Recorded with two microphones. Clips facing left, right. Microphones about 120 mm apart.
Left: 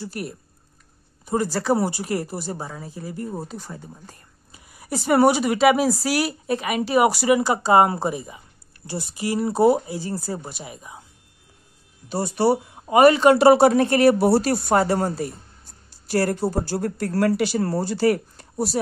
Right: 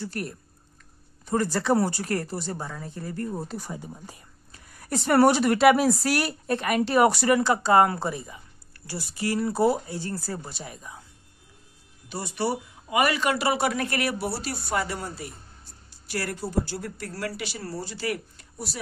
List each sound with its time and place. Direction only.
0.0 s speech: 10° left (ahead or behind)
1.5 s speech: 5° left (ahead or behind)
3.5 s speech: 10° right (ahead or behind)
4.5 s speech: 10° left (ahead or behind)
12.1 s speech: 35° left (ahead or behind)
14.4 s speech: 50° left (ahead or behind)